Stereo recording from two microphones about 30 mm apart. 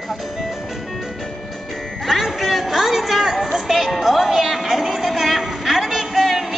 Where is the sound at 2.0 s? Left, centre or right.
Centre.